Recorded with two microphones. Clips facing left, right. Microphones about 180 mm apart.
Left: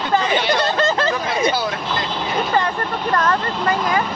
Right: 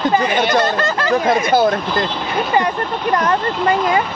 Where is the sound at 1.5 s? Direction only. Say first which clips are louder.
Right 8 dB; 50° right (ahead or behind).